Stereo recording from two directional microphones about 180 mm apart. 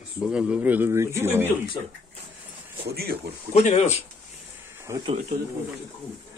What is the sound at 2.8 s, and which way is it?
Speech, 60° right (ahead or behind).